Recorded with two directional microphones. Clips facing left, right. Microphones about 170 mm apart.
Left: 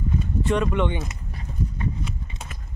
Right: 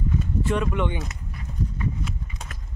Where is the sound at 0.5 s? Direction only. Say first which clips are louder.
Left 3 dB; 5° right (ahead or behind).